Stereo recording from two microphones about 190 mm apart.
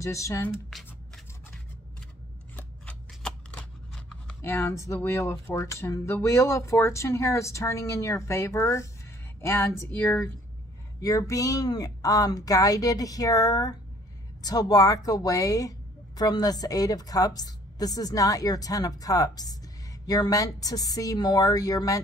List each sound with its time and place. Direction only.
0.0 s speech: 15° left (ahead or behind)
0.7 s shuffling cards: centre (ahead or behind)
2.5 s scissors: 5° left (ahead or behind)
9.4 s a woman's voice: 15° left (ahead or behind)